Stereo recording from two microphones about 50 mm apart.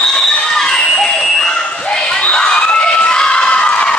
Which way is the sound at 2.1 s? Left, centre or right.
Left.